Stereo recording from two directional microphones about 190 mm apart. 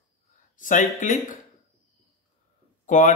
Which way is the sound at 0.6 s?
40° left (ahead or behind).